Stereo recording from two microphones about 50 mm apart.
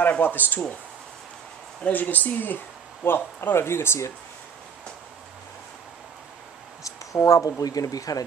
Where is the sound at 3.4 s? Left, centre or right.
Left.